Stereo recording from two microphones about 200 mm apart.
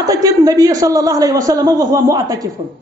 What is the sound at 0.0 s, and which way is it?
A woman's voice, 15° right (ahead or behind).